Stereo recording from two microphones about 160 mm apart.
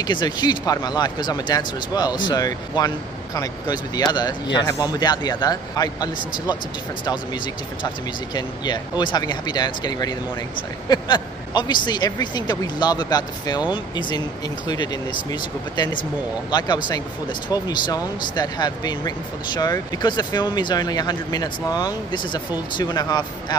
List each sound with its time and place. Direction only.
0.0 s speech: 25° left (ahead or behind)
8.4 s speech: 25° left (ahead or behind)
16.4 s speech: 25° left (ahead or behind)